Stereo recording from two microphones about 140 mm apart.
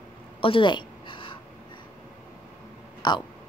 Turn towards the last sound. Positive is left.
turn(degrees=30)  # may be behind; listen again after turning